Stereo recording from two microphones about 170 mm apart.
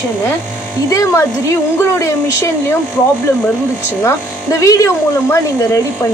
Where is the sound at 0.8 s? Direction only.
20° left (ahead or behind).